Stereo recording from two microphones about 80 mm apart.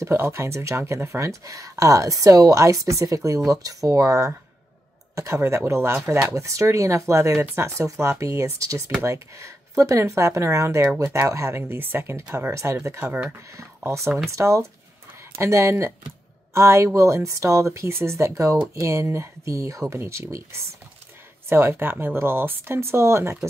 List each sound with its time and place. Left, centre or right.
0.0 s speech: right
13.0 s speech: right
13.6 s speech: right